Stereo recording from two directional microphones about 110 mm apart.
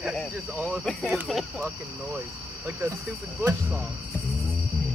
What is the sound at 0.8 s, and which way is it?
Speech, 10° left (ahead or behind).